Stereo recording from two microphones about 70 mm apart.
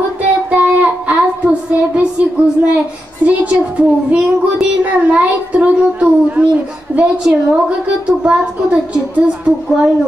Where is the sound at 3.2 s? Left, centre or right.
Centre.